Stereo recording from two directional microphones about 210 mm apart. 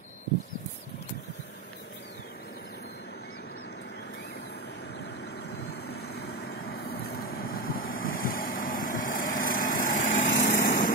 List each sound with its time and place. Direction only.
5.5 s vehicle: 50° left (ahead or behind)